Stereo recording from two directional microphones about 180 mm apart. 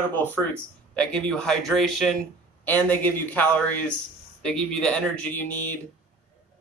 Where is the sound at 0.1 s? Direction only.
10° left (ahead or behind).